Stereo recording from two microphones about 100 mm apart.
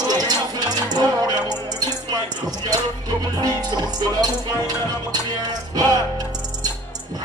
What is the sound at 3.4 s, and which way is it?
Speech, 40° right (ahead or behind).